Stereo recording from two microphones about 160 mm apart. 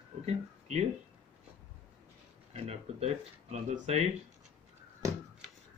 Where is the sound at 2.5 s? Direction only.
40° right (ahead or behind).